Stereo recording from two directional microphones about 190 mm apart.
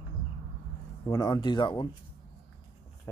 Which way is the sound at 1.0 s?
20° left (ahead or behind).